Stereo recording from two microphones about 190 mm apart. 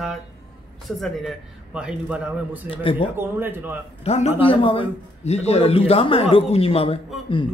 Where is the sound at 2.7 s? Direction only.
30° left (ahead or behind).